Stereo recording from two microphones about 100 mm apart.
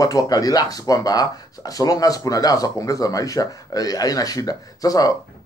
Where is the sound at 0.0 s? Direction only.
40° left (ahead or behind).